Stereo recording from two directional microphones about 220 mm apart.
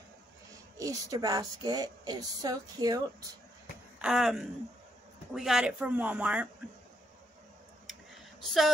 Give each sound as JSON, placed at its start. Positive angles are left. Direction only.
{"t": 0.7, "sound": "speech", "side_deg": -15}
{"t": 4.0, "sound": "speech", "side_deg": 0}
{"t": 7.8, "sound": "a sound", "side_deg": 0}